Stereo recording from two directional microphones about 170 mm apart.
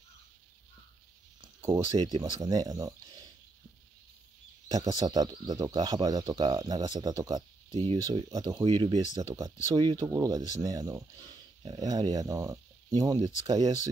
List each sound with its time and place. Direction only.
1.6 s speech: 20° right (ahead or behind)
4.6 s speech: 20° right (ahead or behind)